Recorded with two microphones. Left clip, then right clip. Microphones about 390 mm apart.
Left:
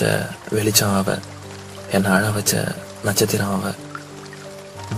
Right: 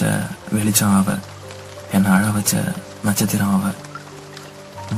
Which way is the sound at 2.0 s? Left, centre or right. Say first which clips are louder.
Right 1 dB; centre.